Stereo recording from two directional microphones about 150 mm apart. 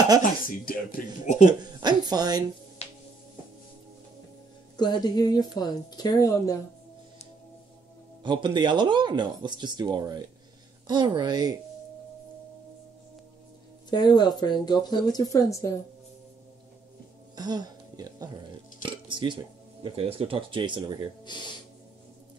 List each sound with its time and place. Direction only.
0.2 s speech: 65° left (ahead or behind)
1.6 s speech: 25° right (ahead or behind)
4.7 s speech: 30° left (ahead or behind)
8.2 s speech: 30° right (ahead or behind)
13.8 s speech: 30° left (ahead or behind)
17.4 s a sound: 25° right (ahead or behind)
18.8 s speech: 30° right (ahead or behind)
21.3 s speech: 30° left (ahead or behind)